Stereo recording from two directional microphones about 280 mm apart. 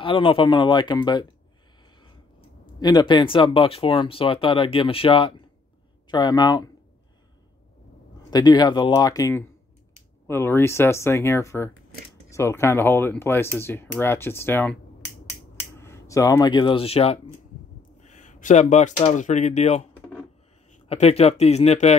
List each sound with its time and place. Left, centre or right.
0.0 s speech: centre
2.8 s speech: centre
8.3 s speech: centre